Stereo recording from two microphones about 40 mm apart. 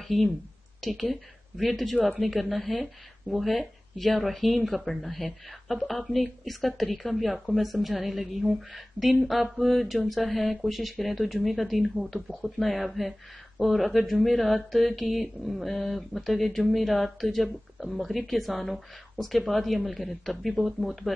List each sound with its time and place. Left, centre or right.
0.7 s speech: centre